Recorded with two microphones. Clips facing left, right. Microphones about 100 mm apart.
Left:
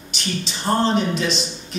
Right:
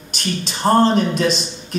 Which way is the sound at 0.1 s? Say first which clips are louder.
Right 4 dB; 50° right (ahead or behind).